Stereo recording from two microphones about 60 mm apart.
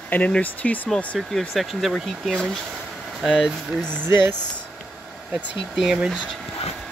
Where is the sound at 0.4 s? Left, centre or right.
Left.